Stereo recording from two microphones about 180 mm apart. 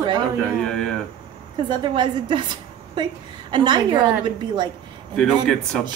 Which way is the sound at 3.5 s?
25° right (ahead or behind).